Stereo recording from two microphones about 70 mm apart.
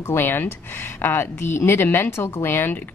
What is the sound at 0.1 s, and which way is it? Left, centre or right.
Speech, left.